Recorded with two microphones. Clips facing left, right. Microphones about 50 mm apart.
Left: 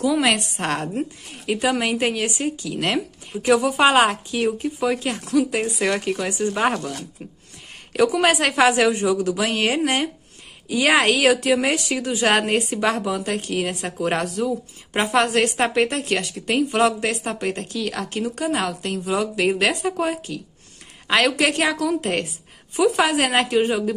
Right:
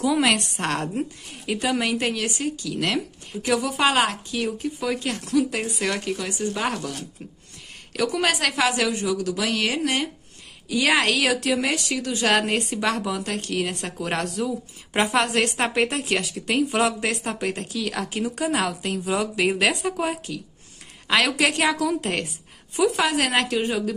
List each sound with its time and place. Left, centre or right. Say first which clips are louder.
0.0 s a woman's voice: left 1 dB; centre; by 6.8 s left
7.9 s a woman's voice: left 5 dB; centre
12.4 s a woman's voice: left 3 dB; centre
22.9 s a woman's voice: left 3 dB; centre